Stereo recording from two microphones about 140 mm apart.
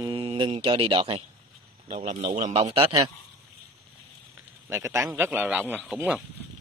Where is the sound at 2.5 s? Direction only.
40° right (ahead or behind).